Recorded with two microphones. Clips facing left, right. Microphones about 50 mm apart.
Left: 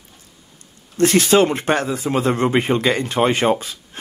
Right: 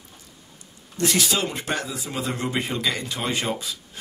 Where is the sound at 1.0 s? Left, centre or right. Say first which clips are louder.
Left 10 dB; left.